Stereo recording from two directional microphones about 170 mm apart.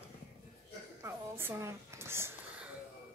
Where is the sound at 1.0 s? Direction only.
15° right (ahead or behind).